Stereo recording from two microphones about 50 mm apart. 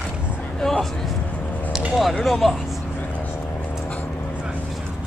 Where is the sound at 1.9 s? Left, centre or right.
Centre.